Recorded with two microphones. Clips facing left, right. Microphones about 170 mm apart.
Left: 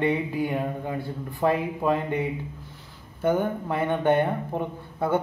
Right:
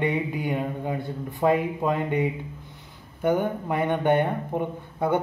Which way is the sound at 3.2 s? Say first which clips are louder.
Even; 15° right (ahead or behind).